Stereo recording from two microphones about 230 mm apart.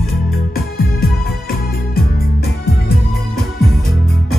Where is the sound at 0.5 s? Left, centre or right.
Left.